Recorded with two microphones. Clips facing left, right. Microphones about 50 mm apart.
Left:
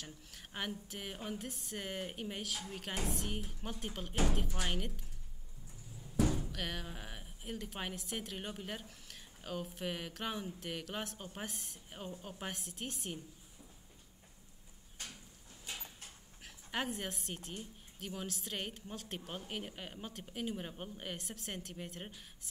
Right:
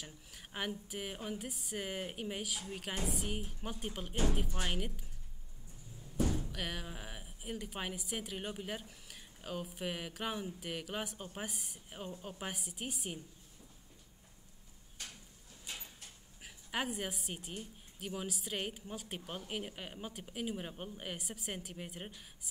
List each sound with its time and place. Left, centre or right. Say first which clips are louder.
0.0 s a woman's voice: even; centre
4.1 s speech: even; left
4.6 s a woman's voice: right 1 dB; centre
6.3 s a woman's voice: even; centre
16.4 s a woman's voice: right 1 dB; centre